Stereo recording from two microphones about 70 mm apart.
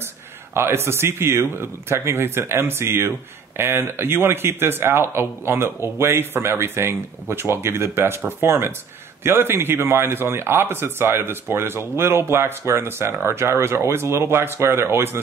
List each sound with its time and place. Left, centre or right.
0.6 s speech: right